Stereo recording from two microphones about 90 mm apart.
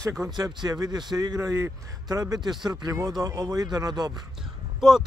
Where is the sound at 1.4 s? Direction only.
35° right (ahead or behind).